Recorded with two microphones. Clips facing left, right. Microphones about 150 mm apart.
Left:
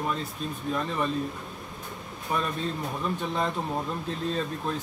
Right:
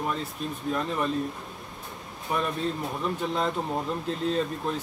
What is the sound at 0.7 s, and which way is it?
Speech, centre (ahead or behind).